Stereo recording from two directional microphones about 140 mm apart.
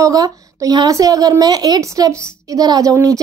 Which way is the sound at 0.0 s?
25° right (ahead or behind).